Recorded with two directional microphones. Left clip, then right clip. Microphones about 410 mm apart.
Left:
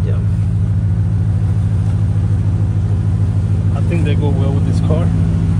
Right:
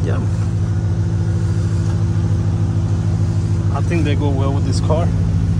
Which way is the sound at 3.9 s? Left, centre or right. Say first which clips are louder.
Even; centre.